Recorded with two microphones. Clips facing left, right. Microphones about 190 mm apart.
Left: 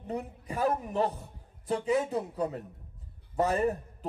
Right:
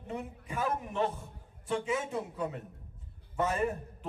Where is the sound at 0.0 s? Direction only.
35° left (ahead or behind).